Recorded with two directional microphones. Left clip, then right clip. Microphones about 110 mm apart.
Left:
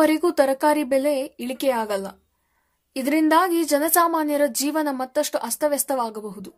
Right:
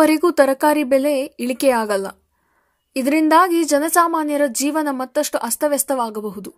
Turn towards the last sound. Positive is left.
turn(degrees=-30)  # may be behind; listen again after turning